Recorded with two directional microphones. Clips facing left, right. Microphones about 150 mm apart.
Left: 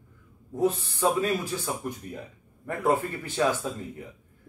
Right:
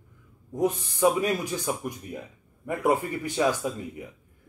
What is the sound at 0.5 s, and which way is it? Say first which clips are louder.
Speech: even; 15° right (ahead or behind).